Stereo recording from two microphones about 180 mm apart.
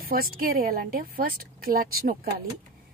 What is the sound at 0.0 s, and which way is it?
A woman's voice, 55° right (ahead or behind).